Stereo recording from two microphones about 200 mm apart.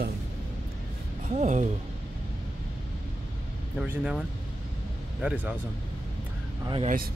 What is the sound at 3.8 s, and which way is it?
A man's voice, 5° right (ahead or behind).